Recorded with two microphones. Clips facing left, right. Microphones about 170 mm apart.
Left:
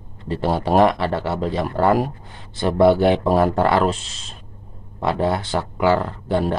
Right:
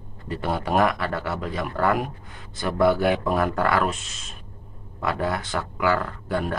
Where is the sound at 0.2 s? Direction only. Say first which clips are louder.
Left 6 dB; 30° left (ahead or behind).